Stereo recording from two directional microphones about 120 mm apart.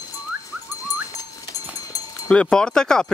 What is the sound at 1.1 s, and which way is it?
Livestock, 30° left (ahead or behind).